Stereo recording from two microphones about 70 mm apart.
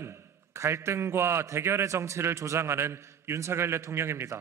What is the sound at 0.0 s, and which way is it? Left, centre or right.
A man's voice, right.